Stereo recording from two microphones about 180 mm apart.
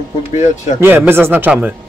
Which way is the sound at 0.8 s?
10° right (ahead or behind).